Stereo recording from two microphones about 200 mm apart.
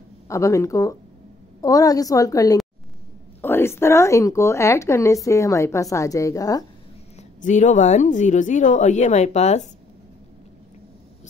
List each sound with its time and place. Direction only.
0.3 s a woman's voice: 15° left (ahead or behind)
7.2 s a woman's voice: 35° left (ahead or behind)